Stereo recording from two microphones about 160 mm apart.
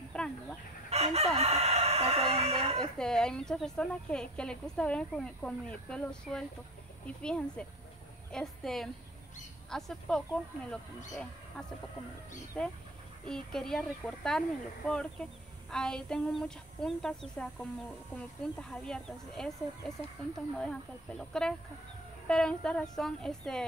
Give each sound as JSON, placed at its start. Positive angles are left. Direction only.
{"t": 0.1, "sound": "chicken", "side_deg": 5}
{"t": 0.8, "sound": "crowing", "side_deg": -40}
{"t": 3.0, "sound": "a woman's voice", "side_deg": 5}
{"t": 12.6, "sound": "a woman's voice", "side_deg": 5}